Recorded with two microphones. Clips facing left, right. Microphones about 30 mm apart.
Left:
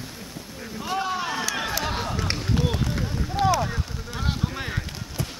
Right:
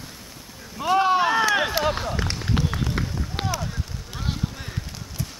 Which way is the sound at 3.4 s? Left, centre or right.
Right.